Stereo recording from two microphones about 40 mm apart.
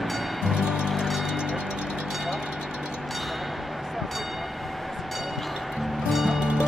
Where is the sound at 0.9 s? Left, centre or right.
Centre.